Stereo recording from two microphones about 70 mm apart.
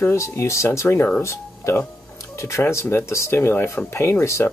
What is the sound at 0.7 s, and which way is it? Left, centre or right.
Speech, left.